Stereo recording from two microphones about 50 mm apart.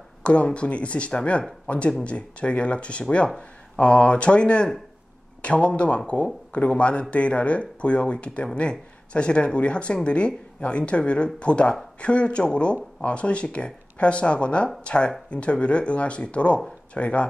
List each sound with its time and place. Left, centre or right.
0.2 s speech: left